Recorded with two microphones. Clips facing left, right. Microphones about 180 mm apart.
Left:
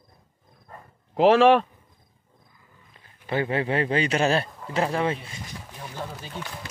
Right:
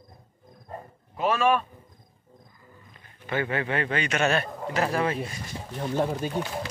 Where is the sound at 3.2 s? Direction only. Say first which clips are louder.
Left 3 dB; 35° left (ahead or behind).